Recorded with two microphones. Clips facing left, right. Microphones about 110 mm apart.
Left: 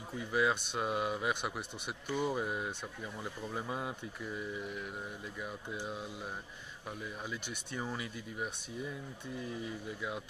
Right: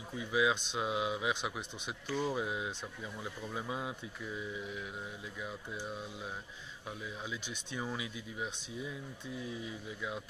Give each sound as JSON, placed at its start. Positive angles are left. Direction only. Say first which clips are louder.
{"t": 0.2, "sound": "speech", "louder": "even", "side_deg": 0}
{"t": 1.3, "sound": "speech", "louder": "even", "side_deg": 10}
{"t": 2.3, "sound": "speech", "louder": "even", "side_deg": 0}
{"t": 7.7, "sound": "speech", "louder": "even", "side_deg": -10}